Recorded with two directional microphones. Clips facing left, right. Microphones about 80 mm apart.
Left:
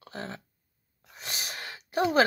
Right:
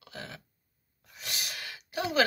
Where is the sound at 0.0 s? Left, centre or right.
Left.